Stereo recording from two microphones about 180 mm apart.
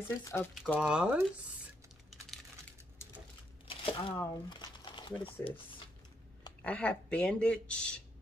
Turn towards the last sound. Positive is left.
turn(degrees=5)  # may be behind; listen again after turning